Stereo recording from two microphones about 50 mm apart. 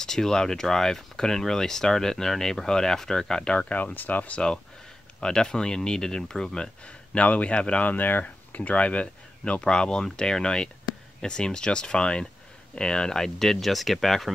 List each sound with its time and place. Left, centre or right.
0.0 s speech: centre
3.5 s speech: left
5.2 s speech: centre